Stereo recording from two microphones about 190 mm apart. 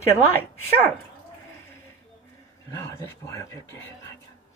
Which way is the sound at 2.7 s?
15° left (ahead or behind).